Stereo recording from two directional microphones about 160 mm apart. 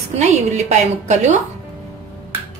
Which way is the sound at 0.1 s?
45° right (ahead or behind).